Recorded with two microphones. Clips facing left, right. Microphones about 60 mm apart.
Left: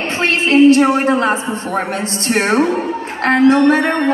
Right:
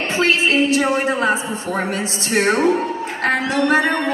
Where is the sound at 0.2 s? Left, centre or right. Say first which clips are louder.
Left 6 dB; left.